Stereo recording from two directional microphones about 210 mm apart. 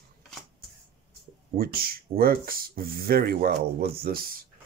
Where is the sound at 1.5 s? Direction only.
45° right (ahead or behind).